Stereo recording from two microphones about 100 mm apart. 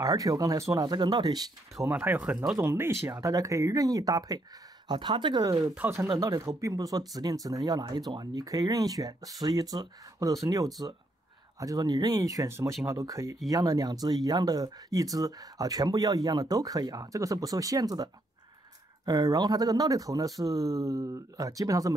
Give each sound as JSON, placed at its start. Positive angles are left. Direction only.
{"t": 0.0, "sound": "speech", "side_deg": -35}
{"t": 1.9, "sound": "speech", "side_deg": -15}
{"t": 2.6, "sound": "speech", "side_deg": -25}
{"t": 4.8, "sound": "speech", "side_deg": -50}
{"t": 5.8, "sound": "speech", "side_deg": -25}
{"t": 6.1, "sound": "speech", "side_deg": -35}